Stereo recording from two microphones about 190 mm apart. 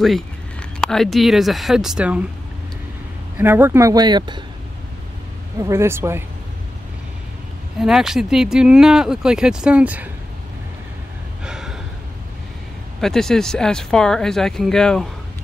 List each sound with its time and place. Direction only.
0.0 s speech: centre (ahead or behind)
3.3 s speech: 10° right (ahead or behind)
5.6 s speech: 15° right (ahead or behind)
7.8 s speech: centre (ahead or behind)
11.4 s gasp: 5° right (ahead or behind)
13.0 s speech: centre (ahead or behind)